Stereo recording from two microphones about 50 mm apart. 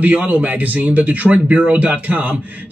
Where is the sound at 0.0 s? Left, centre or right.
Right.